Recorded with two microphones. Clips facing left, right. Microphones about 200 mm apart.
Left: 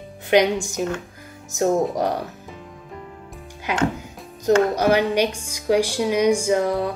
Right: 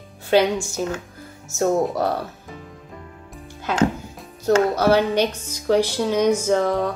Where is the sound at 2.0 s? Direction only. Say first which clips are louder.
Even; 15° left (ahead or behind).